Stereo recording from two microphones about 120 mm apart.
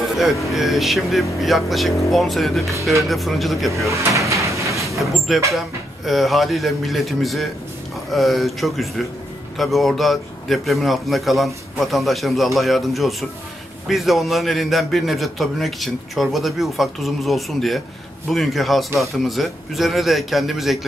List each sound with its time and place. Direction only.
0.2 s a man's voice: centre (ahead or behind)
3.9 s drawer open or close: 25° right (ahead or behind)
4.8 s vehicle: centre (ahead or behind)
6.0 s a man's voice: centre (ahead or behind)